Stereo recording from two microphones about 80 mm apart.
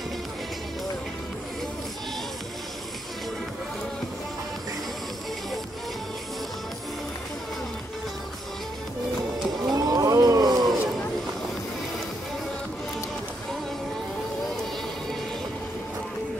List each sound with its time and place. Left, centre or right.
9.8 s roaring cats: right